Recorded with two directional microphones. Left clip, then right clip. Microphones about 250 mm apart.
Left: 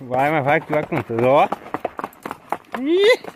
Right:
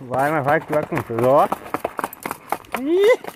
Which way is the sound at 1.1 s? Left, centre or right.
Centre.